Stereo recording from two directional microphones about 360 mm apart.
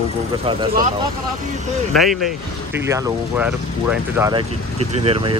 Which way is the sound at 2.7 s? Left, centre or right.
Centre.